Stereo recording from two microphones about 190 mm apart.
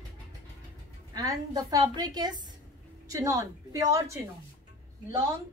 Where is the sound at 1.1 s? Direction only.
20° right (ahead or behind).